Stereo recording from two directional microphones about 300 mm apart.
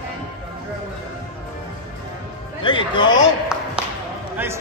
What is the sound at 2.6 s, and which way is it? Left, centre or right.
Music, centre.